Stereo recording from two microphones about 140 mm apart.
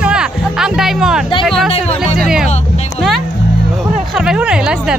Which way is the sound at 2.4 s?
50° left (ahead or behind).